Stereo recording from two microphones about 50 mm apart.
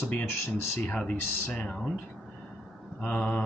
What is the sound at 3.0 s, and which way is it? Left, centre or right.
Speech, left.